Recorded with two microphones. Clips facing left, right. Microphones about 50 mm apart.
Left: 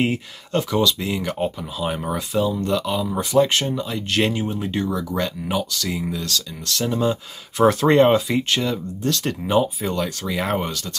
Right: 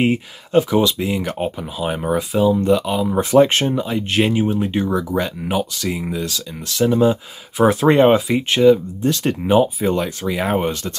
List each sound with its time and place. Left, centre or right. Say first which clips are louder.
0.0 s speech: right 4 dB; centre
1.0 s speech: right 2 dB; centre
3.2 s speech: right 5 dB; right
3.7 s speech: right 4 dB; centre
10.7 s speech: right 5 dB; right